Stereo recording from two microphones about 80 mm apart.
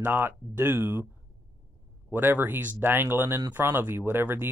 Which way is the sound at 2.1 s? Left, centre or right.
Right.